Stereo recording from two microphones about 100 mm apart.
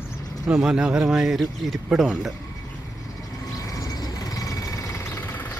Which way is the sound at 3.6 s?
35° left (ahead or behind).